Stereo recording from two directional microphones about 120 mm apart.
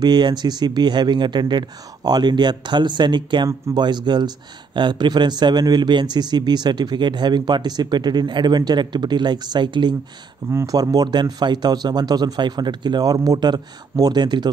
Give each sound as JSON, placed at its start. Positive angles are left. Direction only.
{"t": 0.0, "sound": "a man's voice", "side_deg": -35}
{"t": 3.4, "sound": "speech", "side_deg": -25}
{"t": 3.8, "sound": "a man's voice", "side_deg": -40}
{"t": 10.5, "sound": "a man's voice", "side_deg": -25}